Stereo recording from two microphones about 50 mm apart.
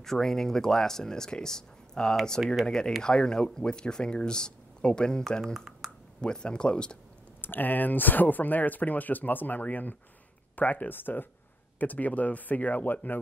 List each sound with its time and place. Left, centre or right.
0.0 s speech: centre
5.8 s a sound: centre
6.2 s speech: centre
7.4 s speech: left